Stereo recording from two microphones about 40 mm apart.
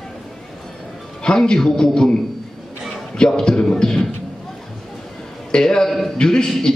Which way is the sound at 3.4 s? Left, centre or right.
Centre.